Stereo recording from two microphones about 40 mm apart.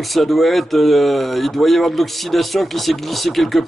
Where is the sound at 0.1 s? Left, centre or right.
Centre.